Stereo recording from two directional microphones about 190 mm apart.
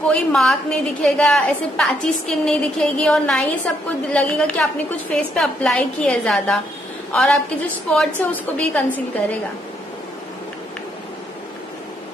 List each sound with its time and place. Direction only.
0.1 s a woman's voice: 5° left (ahead or behind)